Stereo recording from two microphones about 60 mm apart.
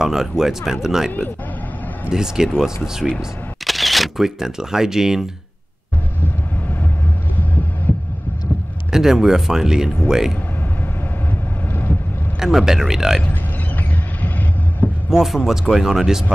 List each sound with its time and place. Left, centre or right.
0.0 s speech: centre
8.9 s speech: centre
11.7 s vehicle: left
12.4 s speech: centre
13.3 s vehicle: left
15.0 s speech: centre